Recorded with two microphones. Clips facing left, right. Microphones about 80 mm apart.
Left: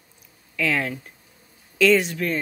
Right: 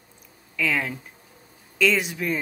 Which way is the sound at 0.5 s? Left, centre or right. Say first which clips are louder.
Left 1 dB; centre.